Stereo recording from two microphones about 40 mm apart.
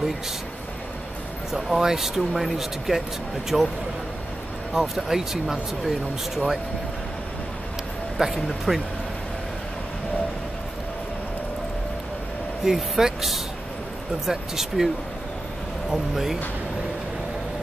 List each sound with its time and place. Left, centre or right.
1.5 s speech: centre
4.7 s speech: centre
8.2 s speech: centre
8.7 s speech: centre
12.6 s speech: centre
15.9 s speech: centre